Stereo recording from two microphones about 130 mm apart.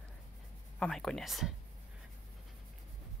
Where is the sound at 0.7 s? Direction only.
5° left (ahead or behind).